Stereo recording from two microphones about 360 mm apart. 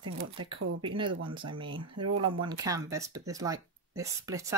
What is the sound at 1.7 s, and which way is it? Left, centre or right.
Speech, right.